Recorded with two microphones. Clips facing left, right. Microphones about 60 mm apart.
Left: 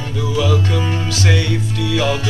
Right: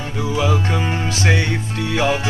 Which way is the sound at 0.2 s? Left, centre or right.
Right.